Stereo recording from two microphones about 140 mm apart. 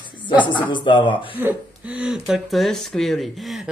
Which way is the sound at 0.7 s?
35° left (ahead or behind).